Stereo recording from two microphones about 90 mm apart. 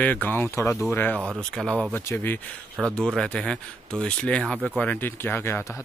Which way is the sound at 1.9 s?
20° left (ahead or behind).